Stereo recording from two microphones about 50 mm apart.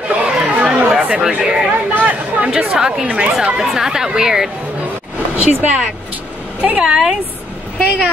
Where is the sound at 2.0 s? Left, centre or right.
Right.